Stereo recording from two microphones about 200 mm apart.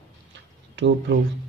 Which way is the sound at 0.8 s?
65° right (ahead or behind).